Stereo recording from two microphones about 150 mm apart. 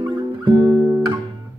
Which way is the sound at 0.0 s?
15° right (ahead or behind).